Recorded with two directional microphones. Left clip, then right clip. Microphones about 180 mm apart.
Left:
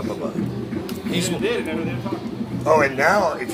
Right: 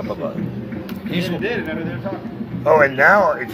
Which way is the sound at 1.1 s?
45° right (ahead or behind).